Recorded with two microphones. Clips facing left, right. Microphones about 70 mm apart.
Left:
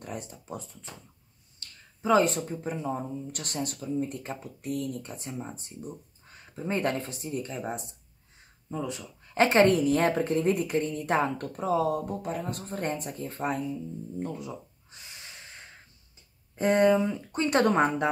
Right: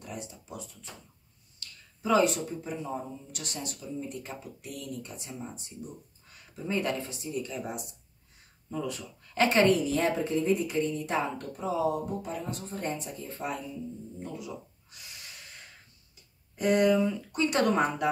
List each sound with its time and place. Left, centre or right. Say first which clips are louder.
0.0 s speech: left 2 dB; left
8.6 s speech: left 1 dB; left
9.7 s a woman's voice: left 2 dB; left
14.9 s snort: left 3 dB; left
16.5 s speech: left 2 dB; left